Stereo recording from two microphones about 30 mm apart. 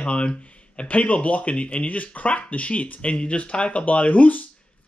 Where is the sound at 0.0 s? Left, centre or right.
Left.